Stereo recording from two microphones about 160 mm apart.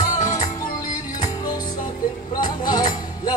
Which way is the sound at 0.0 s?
25° left (ahead or behind).